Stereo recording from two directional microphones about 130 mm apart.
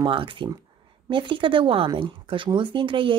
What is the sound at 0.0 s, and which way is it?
Speech, 40° right (ahead or behind).